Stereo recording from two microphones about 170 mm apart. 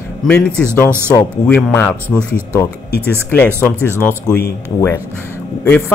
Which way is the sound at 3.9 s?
15° left (ahead or behind).